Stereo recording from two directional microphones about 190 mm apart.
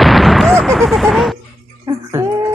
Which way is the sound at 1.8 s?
15° right (ahead or behind).